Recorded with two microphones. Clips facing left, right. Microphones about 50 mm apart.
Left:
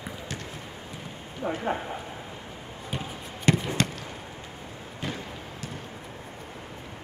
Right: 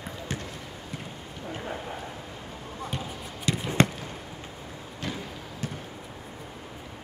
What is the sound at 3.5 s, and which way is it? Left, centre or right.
Basketball bounce, left.